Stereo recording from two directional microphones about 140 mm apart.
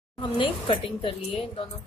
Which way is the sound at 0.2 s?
35° left (ahead or behind).